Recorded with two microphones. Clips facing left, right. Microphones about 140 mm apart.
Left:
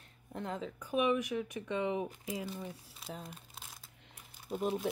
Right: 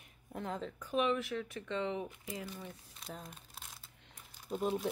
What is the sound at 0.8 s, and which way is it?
Speech, 10° left (ahead or behind).